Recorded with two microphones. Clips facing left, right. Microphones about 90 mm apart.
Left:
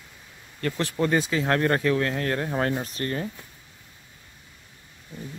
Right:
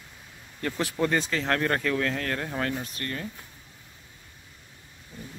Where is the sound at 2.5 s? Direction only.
35° left (ahead or behind).